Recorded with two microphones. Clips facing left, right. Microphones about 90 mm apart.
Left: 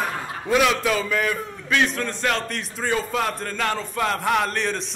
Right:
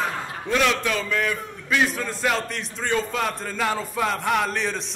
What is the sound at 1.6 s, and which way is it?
A man's voice, 5° right (ahead or behind).